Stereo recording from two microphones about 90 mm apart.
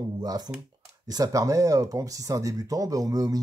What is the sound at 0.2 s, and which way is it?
Speech, 45° right (ahead or behind).